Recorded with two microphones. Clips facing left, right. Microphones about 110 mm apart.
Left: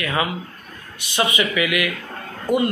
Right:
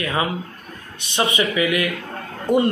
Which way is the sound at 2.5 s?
5° left (ahead or behind).